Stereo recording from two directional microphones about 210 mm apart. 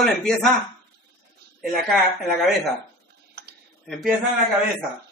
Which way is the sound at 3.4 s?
50° right (ahead or behind).